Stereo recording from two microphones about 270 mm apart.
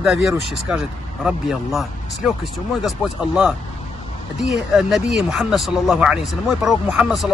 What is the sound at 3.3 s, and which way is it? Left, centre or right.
Speech, centre.